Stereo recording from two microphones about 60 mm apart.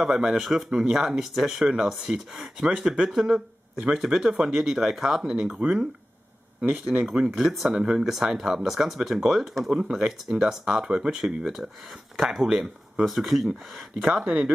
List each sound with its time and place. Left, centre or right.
0.0 s speech: centre
5.6 s speech: centre
7.3 s speech: centre
12.4 s speech: centre
13.0 s speech: centre
14.0 s speech: right